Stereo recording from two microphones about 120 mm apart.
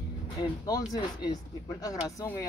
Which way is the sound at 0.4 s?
35° left (ahead or behind).